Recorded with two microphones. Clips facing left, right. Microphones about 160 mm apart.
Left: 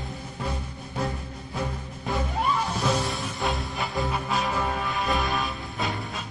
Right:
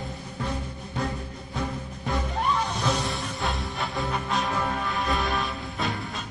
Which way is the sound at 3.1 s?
Centre (ahead or behind).